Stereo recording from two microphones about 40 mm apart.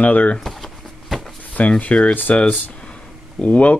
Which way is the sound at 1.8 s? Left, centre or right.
Left.